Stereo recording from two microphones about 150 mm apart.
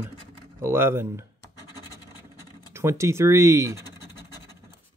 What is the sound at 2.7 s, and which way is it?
Speech, 20° right (ahead or behind).